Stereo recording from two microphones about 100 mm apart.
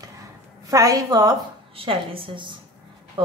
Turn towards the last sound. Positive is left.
turn(degrees=-60)  # may be behind; listen again after turning